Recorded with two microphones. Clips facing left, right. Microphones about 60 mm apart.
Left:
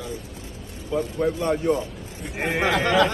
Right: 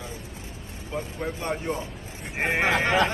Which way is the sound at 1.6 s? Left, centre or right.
Right.